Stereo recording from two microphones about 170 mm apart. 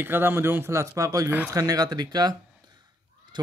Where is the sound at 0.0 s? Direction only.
10° right (ahead or behind).